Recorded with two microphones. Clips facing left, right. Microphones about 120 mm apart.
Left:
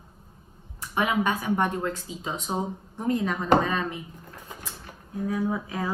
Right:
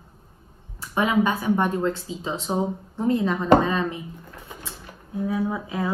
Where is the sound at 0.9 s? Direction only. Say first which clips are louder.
Right 3 dB; 25° right (ahead or behind).